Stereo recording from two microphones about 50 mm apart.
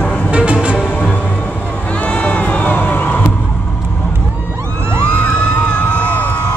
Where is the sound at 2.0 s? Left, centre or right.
Left.